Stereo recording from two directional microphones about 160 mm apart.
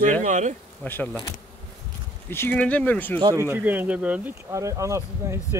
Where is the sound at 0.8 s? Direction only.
10° left (ahead or behind).